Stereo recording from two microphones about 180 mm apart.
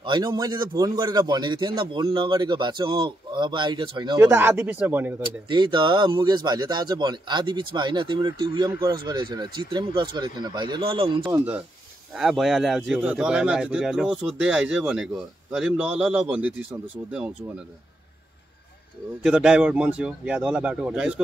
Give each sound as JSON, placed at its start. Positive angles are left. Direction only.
{"t": 0.0, "sound": "a man's voice", "side_deg": -25}
{"t": 4.2, "sound": "a man's voice", "side_deg": -15}
{"t": 5.2, "sound": "a man's voice", "side_deg": -25}
{"t": 11.3, "sound": "a man's voice", "side_deg": -10}
{"t": 19.2, "sound": "speech", "side_deg": -5}